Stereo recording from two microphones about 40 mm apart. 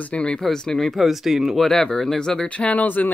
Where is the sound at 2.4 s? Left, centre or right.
Left.